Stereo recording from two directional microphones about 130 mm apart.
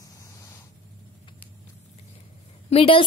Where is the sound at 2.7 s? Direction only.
45° left (ahead or behind).